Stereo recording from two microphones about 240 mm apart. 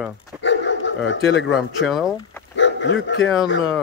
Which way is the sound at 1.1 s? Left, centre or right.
Left.